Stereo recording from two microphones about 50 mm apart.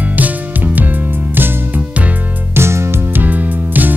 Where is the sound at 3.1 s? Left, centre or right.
Right.